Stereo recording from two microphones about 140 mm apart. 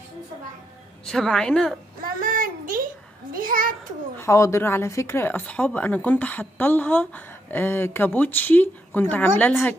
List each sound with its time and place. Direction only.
1.0 s a woman's voice: 5° left (ahead or behind)
2.1 s child singing: 80° right
3.3 s a child's voice: 85° right
4.2 s speech: 20° left (ahead or behind)